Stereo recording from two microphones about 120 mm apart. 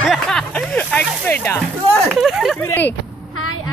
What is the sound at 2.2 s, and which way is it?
Speech, centre (ahead or behind).